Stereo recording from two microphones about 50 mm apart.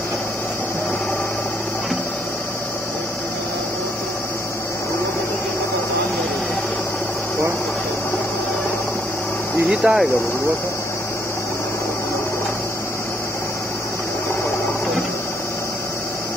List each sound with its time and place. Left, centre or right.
9.8 s speech: right